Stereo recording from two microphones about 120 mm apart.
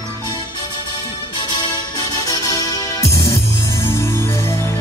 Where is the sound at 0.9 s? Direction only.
40° left (ahead or behind).